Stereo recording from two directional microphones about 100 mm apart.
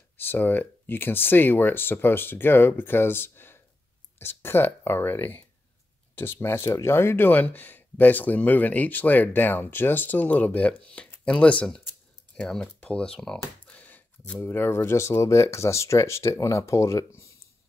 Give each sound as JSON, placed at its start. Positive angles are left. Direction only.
{"t": 0.2, "sound": "speech", "side_deg": 20}
{"t": 13.7, "sound": "speech", "side_deg": 15}